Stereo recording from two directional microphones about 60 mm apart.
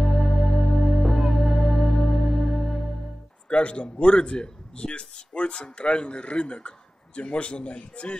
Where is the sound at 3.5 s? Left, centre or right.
Centre.